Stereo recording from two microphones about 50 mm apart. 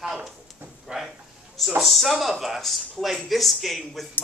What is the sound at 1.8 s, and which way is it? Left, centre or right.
Speech, centre.